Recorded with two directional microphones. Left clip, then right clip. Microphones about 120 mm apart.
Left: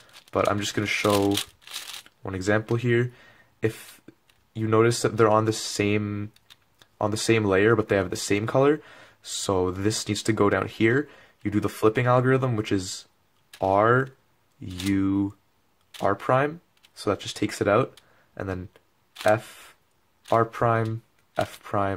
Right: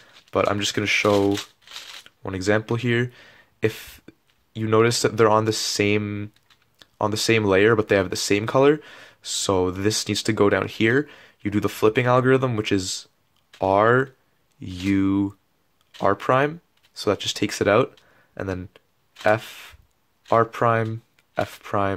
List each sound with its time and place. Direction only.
0.3 s speech: 25° right (ahead or behind)
20.2 s speech: 25° right (ahead or behind)